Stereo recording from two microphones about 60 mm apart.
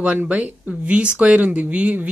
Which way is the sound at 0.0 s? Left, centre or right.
Right.